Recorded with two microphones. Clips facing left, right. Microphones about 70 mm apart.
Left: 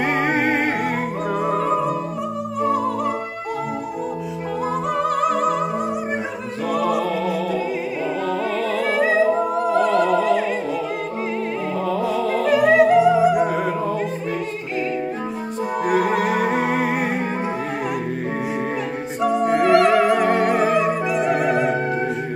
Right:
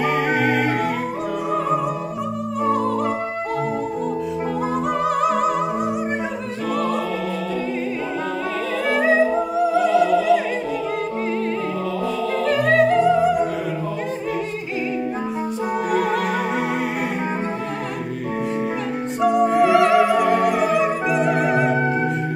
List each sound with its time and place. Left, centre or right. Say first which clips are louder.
0.0 s music: even; left
5.2 s music: right 1 dB; centre
6.7 s music: left 2 dB; centre
9.6 s music: right 4 dB; left
12.4 s music: left 2 dB; centre
15.9 s music: left 3 dB; centre
19.2 s music: right 1 dB; centre
20.4 s music: even; left
20.7 s music: even; centre